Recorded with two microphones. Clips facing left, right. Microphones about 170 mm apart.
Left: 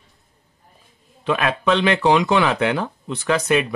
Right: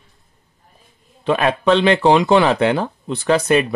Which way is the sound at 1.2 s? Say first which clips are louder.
Right 4 dB; 35° right (ahead or behind).